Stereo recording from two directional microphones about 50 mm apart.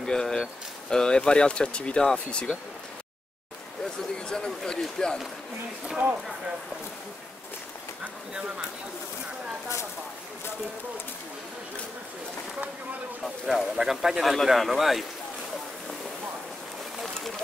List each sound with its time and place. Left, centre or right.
0.0 s a sound: centre
0.8 s speech: centre
4.3 s speech: centre
13.2 s speech: centre